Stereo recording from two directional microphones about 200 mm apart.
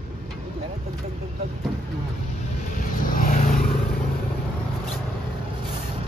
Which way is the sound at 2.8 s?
45° left (ahead or behind).